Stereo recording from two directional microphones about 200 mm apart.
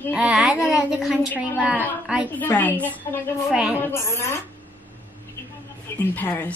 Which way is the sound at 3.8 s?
10° left (ahead or behind).